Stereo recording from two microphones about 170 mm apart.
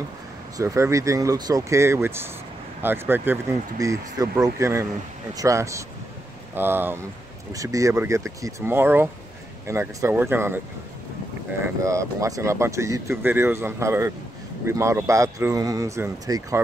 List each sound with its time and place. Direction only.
0.6 s speech: 20° right (ahead or behind)
11.6 s speech: 20° right (ahead or behind)